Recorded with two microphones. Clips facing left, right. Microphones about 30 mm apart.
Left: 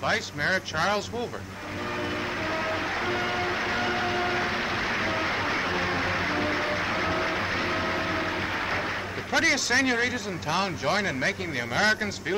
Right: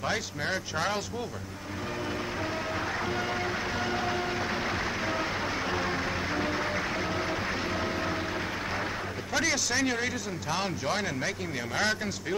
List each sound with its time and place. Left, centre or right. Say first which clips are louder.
0.0 s speech: left 4 dB; left
2.4 s music: left 4 dB; left
9.3 s speech: left 5 dB; left